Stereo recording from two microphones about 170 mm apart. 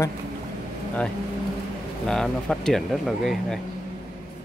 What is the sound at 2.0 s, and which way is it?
Speech, 5° left (ahead or behind).